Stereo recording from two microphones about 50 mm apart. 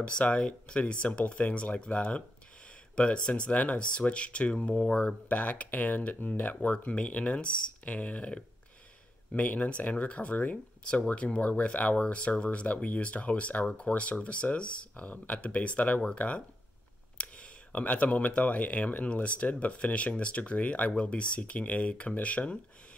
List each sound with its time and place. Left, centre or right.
0.0 s speech: left